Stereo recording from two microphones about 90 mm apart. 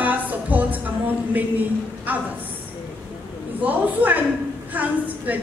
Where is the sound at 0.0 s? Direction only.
20° right (ahead or behind).